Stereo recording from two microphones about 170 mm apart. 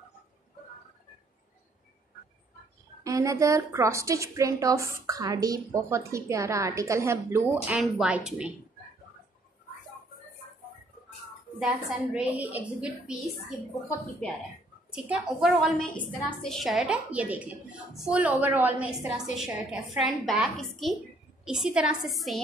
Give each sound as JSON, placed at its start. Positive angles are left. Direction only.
{"t": 3.0, "sound": "a woman's voice", "side_deg": -20}
{"t": 11.6, "sound": "a woman's voice", "side_deg": -5}
{"t": 14.9, "sound": "a woman's voice", "side_deg": -5}